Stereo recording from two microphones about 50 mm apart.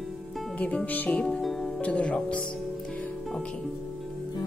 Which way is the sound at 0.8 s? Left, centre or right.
Left.